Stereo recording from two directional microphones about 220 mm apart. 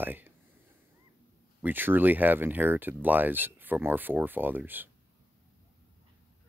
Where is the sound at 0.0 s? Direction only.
10° right (ahead or behind).